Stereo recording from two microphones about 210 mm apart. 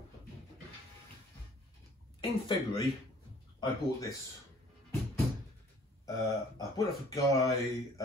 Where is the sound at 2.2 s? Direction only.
20° left (ahead or behind).